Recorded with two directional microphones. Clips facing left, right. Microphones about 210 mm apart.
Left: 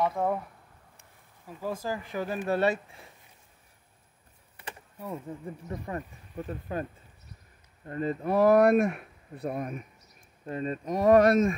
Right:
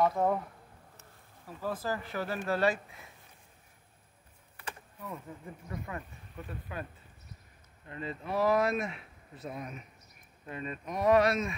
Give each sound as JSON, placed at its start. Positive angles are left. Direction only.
{"t": 1.6, "sound": "speech", "side_deg": 10}
{"t": 4.6, "sound": "a sound", "side_deg": 25}
{"t": 5.7, "sound": "speech", "side_deg": 35}
{"t": 10.4, "sound": "speech", "side_deg": 40}